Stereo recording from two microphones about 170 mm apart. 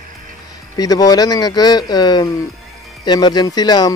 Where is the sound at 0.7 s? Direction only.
20° left (ahead or behind).